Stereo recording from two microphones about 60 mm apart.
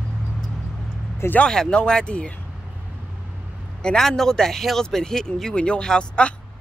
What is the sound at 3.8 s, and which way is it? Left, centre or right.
Speech, centre.